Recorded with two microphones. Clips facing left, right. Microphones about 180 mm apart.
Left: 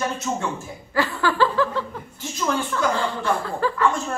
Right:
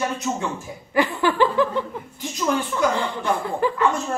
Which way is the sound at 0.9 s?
15° right (ahead or behind).